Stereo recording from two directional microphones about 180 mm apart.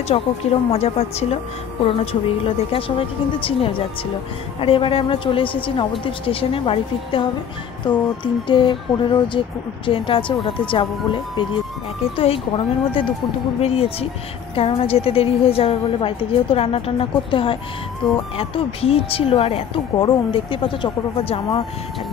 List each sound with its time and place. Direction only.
0.1 s a woman's voice: 35° left (ahead or behind)